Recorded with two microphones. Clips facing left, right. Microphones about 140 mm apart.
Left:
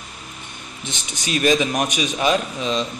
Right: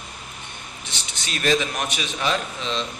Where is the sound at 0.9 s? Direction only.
15° left (ahead or behind).